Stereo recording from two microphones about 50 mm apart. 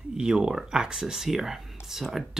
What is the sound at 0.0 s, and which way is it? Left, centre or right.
Speech, centre.